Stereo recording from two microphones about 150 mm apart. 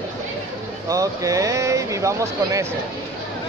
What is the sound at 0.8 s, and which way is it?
Speech, 20° right (ahead or behind).